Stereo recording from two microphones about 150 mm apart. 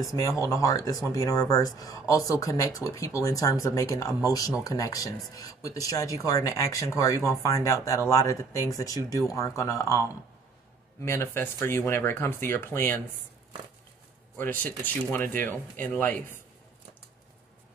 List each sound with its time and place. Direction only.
0.0 s speech: 20° left (ahead or behind)
14.3 s speech: 10° left (ahead or behind)